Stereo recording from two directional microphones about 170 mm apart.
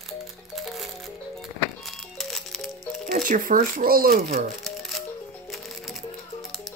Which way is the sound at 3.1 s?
50° right (ahead or behind).